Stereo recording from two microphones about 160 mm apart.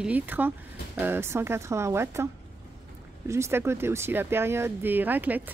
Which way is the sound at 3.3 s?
15° right (ahead or behind).